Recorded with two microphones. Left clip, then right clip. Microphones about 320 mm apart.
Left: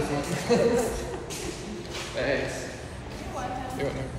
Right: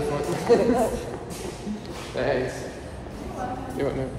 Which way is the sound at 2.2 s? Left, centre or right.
Right.